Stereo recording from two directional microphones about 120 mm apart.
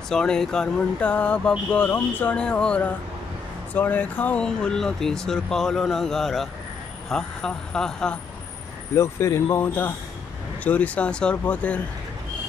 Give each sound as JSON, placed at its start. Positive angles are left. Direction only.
{"t": 0.1, "sound": "speech", "side_deg": 5}
{"t": 8.9, "sound": "speech", "side_deg": 25}